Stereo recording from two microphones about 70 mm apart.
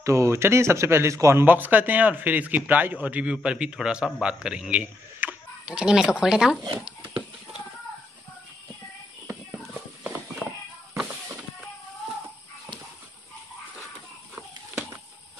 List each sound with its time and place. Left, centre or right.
0.0 s speech: right
1.4 s a man's voice: right; by 6.5 s centre
9.8 s horse: centre